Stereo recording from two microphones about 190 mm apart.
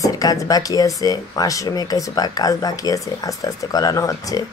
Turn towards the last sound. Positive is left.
turn(degrees=20)  # may be behind; listen again after turning